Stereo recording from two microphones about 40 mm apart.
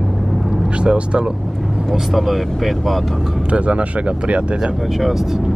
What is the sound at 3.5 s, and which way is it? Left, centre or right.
Speech, right.